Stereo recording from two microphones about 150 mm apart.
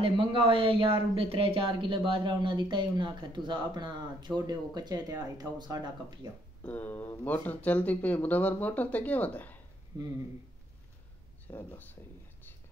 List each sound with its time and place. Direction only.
0.0 s speech: 35° right (ahead or behind)
6.6 s speech: 10° left (ahead or behind)
11.4 s speech: 15° left (ahead or behind)